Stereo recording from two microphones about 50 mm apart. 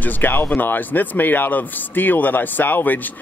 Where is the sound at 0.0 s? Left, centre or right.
Left.